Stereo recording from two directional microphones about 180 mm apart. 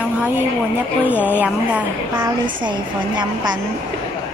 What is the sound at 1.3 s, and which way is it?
Speech, 5° right (ahead or behind).